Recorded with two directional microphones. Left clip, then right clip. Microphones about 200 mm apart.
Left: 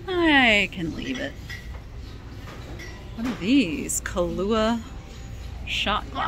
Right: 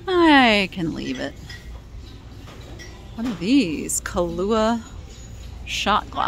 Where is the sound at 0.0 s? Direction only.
30° right (ahead or behind).